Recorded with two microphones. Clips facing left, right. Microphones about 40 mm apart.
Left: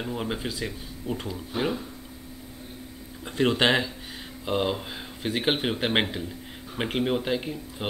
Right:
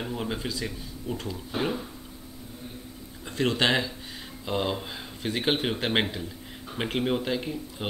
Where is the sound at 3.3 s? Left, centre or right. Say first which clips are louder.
Left 2 dB; centre.